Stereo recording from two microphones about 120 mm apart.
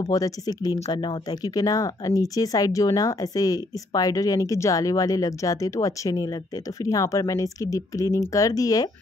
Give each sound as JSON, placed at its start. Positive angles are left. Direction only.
{"t": 0.0, "sound": "speech", "side_deg": 30}